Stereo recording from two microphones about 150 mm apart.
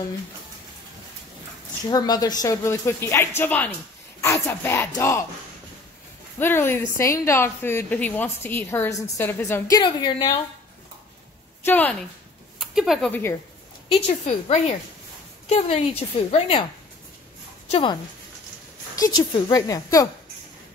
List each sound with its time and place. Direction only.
1.9 s a woman's voice: 25° left (ahead or behind)
6.4 s a woman's voice: 15° left (ahead or behind)
9.8 s speech: 30° left (ahead or behind)
11.6 s speech: 10° left (ahead or behind)
12.5 s a sound: 5° right (ahead or behind)
13.8 s a woman's voice: 45° left (ahead or behind)
17.6 s speech: 45° left (ahead or behind)
18.9 s speech: 25° left (ahead or behind)